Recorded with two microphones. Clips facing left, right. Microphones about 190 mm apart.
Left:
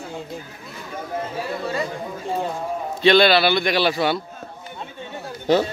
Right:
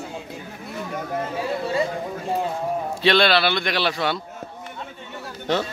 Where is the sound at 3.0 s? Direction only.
Centre (ahead or behind).